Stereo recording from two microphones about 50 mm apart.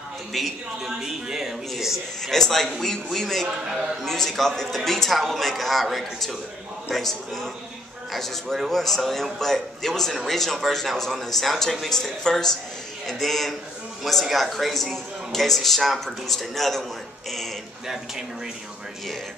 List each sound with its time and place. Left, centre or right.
0.3 s a man's voice: centre
0.8 s a man's voice: centre
2.3 s a man's voice: centre